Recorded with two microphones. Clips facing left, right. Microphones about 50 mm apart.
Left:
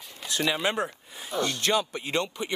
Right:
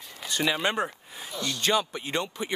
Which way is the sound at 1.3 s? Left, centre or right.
Left.